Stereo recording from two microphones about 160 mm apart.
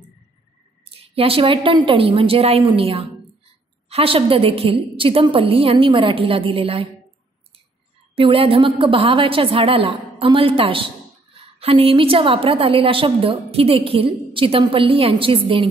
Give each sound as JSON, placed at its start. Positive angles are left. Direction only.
{"t": 1.1, "sound": "a woman's voice", "side_deg": -35}
{"t": 8.2, "sound": "a woman's voice", "side_deg": -35}